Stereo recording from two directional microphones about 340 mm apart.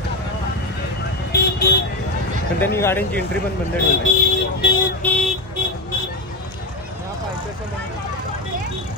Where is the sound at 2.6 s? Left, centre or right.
Centre.